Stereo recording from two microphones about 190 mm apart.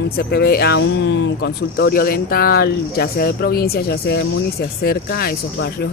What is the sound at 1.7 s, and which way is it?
Speech, 50° left (ahead or behind).